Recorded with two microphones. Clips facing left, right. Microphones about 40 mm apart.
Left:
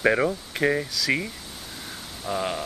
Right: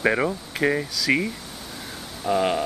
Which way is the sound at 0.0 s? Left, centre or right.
Centre.